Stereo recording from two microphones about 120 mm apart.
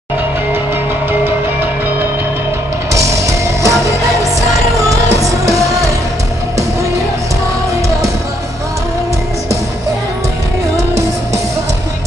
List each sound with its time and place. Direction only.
2.9 s music: 25° right (ahead or behind)